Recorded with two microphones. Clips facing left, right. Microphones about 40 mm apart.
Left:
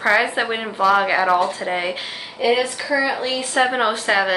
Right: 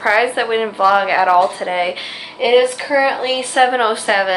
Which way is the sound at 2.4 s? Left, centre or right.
Right.